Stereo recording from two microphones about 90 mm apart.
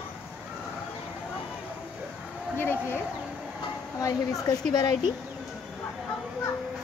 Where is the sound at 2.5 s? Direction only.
25° left (ahead or behind).